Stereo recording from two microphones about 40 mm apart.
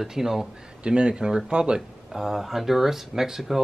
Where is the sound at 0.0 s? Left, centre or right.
Centre.